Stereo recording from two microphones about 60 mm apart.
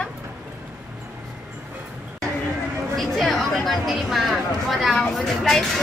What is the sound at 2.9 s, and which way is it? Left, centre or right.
Speech, centre.